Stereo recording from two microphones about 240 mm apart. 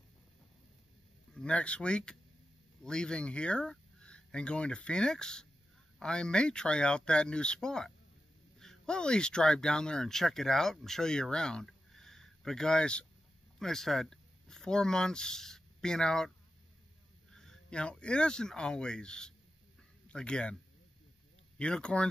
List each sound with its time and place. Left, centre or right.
1.3 s speech: centre
17.3 s speech: centre
21.5 s speech: centre